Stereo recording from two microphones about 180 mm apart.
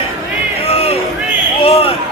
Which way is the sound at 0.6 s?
35° left (ahead or behind).